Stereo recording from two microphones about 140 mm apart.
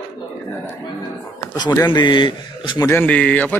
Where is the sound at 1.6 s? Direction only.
30° left (ahead or behind).